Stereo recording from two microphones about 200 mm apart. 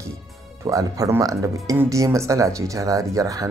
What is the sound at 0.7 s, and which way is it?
Speech, 15° right (ahead or behind).